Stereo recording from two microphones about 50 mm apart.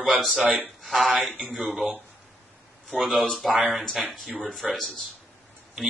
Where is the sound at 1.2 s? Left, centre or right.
Right.